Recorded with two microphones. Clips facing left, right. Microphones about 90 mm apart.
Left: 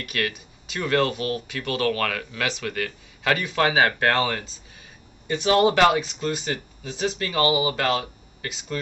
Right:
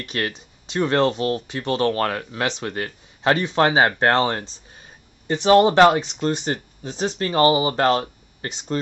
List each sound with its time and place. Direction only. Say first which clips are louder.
0.0 s speech: right 1 dB; 25° right (ahead or behind)